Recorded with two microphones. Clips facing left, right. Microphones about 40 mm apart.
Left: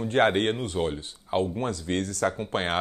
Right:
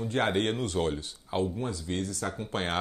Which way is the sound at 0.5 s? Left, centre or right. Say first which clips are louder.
Left 1 dB; left.